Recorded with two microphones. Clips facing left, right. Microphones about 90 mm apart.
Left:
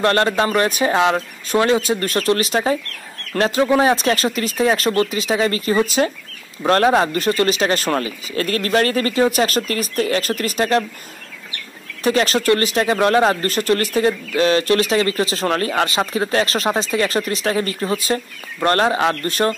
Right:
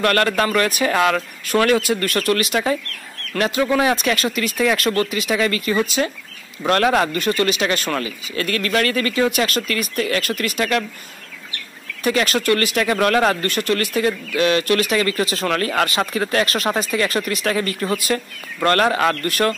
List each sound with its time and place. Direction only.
0.0 s a man's voice: 25° left (ahead or behind)
12.0 s a man's voice: 35° left (ahead or behind)